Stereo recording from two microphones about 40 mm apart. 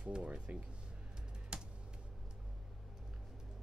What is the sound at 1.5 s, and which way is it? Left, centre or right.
Computer keyboard, right.